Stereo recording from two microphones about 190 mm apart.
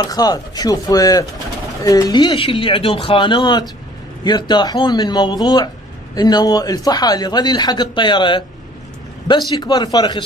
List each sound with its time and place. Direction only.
0.0 s speech: 20° left (ahead or behind)
9.5 s speech: 20° left (ahead or behind)